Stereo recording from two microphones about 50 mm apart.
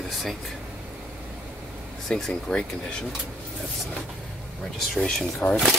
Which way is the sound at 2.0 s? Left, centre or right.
Centre.